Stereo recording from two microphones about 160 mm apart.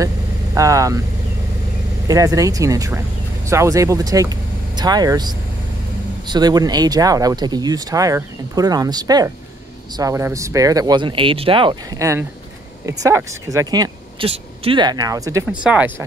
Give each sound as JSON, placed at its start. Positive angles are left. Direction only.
{"t": 0.6, "sound": "speech", "side_deg": -20}
{"t": 2.0, "sound": "speech", "side_deg": -20}
{"t": 12.0, "sound": "speech", "side_deg": -20}
{"t": 14.2, "sound": "speech", "side_deg": -35}
{"t": 15.6, "sound": "speech", "side_deg": -10}